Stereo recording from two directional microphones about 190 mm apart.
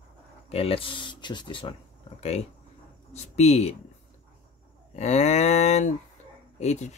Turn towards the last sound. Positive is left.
turn(degrees=35)  # may be behind; listen again after turning